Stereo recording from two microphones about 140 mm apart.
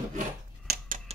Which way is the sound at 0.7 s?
90° right.